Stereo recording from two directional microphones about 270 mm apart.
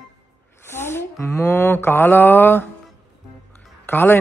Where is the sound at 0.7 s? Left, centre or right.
Centre.